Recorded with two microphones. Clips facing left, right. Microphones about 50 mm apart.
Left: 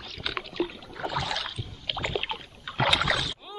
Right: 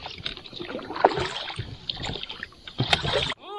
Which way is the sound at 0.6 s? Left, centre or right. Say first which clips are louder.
Right 13 dB; right.